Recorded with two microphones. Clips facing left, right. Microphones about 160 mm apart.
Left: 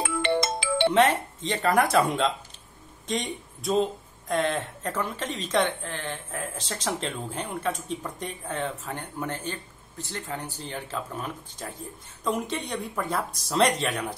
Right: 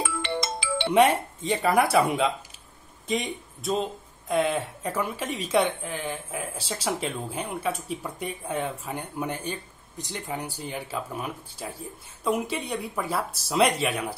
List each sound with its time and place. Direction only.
0.0 s music: 55° left (ahead or behind)
0.9 s a woman's voice: 10° right (ahead or behind)